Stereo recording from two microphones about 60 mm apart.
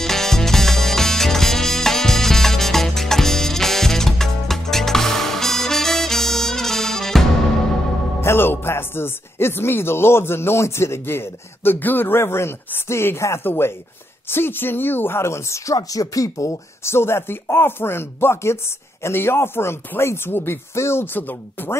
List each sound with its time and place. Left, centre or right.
0.0 s music: centre
8.2 s speech: left
15.7 s speech: left
16.8 s speech: left